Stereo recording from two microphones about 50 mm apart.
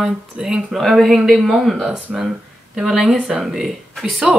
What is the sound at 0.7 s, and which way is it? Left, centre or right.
Speech, centre.